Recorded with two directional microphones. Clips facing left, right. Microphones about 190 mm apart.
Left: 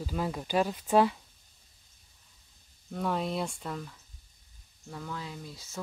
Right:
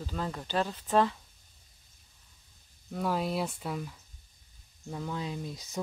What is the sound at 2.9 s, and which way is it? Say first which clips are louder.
Speech: right 1 dB; centre (ahead or behind).